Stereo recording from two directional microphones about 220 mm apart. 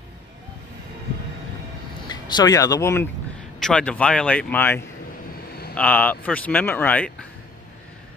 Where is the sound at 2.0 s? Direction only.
20° left (ahead or behind).